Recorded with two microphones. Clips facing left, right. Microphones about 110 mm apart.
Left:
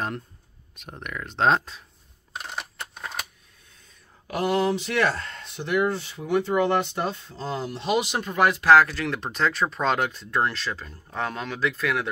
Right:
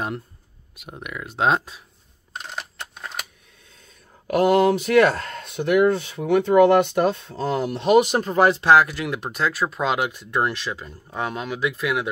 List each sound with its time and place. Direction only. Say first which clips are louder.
0.7 s speech: right 1 dB; 5° right (ahead or behind)
4.3 s speech: right 6 dB; 50° right (ahead or behind); by 8.7 s 30° right (ahead or behind)
8.7 s speech: right 1 dB; 15° right (ahead or behind)